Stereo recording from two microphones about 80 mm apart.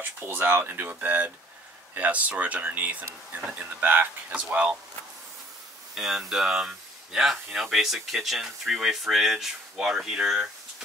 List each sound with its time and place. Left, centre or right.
0.0 s speech: right
5.9 s speech: centre